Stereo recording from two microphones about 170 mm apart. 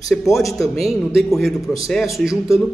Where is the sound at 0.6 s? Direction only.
Centre (ahead or behind).